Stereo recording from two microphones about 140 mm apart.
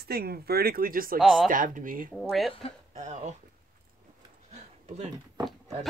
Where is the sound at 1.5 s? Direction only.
70° right (ahead or behind).